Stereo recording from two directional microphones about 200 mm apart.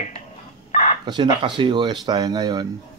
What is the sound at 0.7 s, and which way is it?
Chicken, 35° left (ahead or behind).